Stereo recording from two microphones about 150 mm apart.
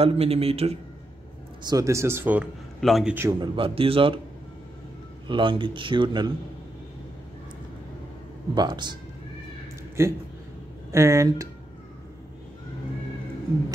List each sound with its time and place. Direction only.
0.0 s speech: 40° right (ahead or behind)
1.7 s speech: 20° right (ahead or behind)
2.8 s a man's voice: centre (ahead or behind)
3.3 s speech: 35° right (ahead or behind)
5.3 s speech: 35° right (ahead or behind)
8.5 s speech: 30° right (ahead or behind)
10.0 s speech: 20° right (ahead or behind)